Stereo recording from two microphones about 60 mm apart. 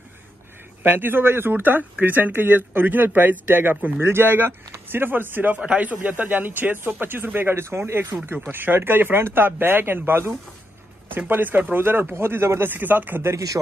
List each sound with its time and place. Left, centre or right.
0.8 s speech: right